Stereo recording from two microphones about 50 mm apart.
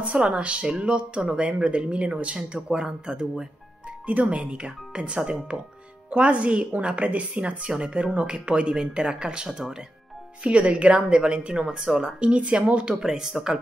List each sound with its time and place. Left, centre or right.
0.0 s speech: right
4.0 s speech: right
10.4 s speech: right; by 12.1 s centre
12.2 s speech: right
13.0 s speech: centre